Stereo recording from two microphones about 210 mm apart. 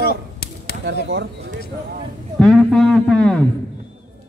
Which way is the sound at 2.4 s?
Centre (ahead or behind).